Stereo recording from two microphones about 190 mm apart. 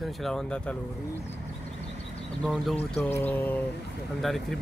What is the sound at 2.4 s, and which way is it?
Speech, 5° left (ahead or behind).